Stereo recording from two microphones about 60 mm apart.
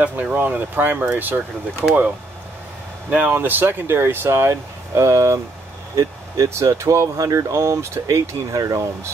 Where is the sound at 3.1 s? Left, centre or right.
Right.